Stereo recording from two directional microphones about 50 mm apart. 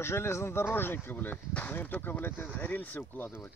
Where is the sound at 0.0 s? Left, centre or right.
Left.